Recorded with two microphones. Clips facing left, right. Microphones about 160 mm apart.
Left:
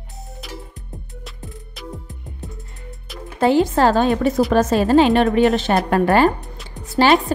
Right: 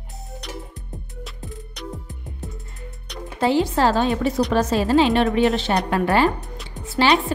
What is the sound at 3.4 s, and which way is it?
A woman's voice, 50° left (ahead or behind).